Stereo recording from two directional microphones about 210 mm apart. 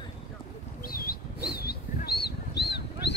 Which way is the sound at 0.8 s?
45° left (ahead or behind).